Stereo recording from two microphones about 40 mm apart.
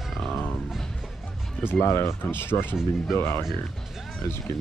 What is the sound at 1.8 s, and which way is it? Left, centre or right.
Speech, left.